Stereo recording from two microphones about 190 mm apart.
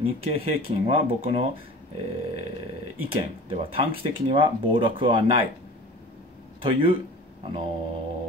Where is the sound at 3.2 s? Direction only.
30° right (ahead or behind).